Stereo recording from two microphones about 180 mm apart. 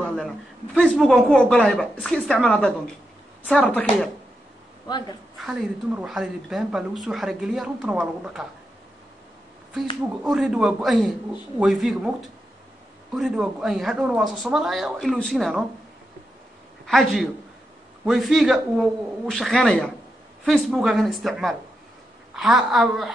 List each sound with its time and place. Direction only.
0.0 s a sound: centre (ahead or behind)
0.7 s speech: centre (ahead or behind)
4.8 s a woman's voice: 25° left (ahead or behind)
5.4 s speech: centre (ahead or behind)
10.2 s speech: centre (ahead or behind)
16.8 s speech: centre (ahead or behind)